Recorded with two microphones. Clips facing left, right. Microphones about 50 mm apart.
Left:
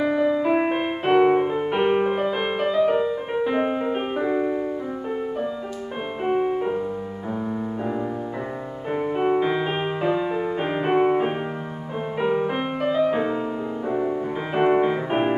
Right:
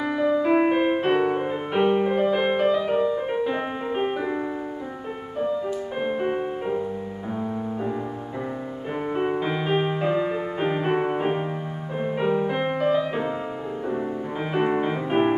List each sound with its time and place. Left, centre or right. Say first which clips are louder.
0.0 s music: left 2 dB; centre
1.9 s music: right 1 dB; left
2.2 s music: right 3 dB; centre
6.3 s music: left 4 dB; centre
8.9 s music: left 4 dB; centre